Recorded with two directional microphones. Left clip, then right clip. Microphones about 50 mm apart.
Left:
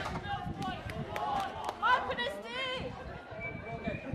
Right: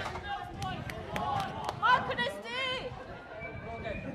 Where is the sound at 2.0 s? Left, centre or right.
Right.